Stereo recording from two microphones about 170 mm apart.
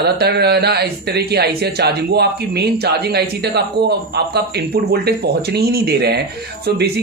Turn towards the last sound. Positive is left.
turn(degrees=-70)  # may be behind; listen again after turning